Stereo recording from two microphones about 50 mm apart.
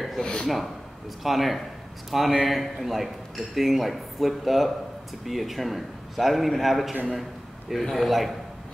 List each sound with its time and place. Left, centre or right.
0.2 s speech: centre
1.2 s a man's voice: centre